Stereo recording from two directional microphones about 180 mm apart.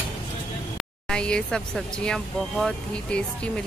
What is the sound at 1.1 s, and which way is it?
Speech, 5° left (ahead or behind).